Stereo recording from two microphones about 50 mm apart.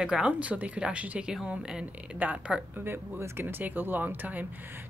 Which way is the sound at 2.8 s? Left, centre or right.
Right.